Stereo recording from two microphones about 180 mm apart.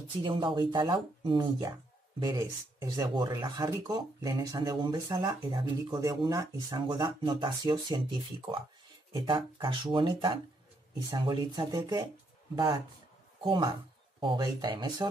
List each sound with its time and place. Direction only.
0.2 s speech: 25° right (ahead or behind)